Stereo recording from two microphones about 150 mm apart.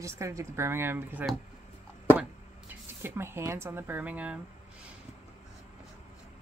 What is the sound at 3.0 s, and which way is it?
Speech, 15° right (ahead or behind).